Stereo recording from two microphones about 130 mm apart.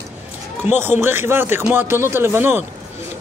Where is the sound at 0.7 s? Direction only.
15° right (ahead or behind).